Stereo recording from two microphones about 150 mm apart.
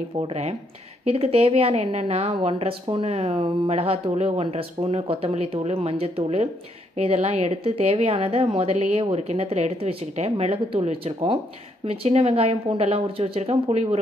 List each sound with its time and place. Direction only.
0.3 s a woman's voice: 45° right (ahead or behind)